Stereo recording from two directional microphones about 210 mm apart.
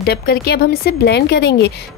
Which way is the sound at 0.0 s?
50° left (ahead or behind).